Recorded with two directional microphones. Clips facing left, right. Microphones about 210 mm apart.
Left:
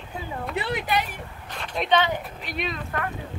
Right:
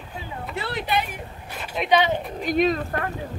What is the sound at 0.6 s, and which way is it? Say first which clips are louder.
Speech: left 1 dB; 15° left (ahead or behind).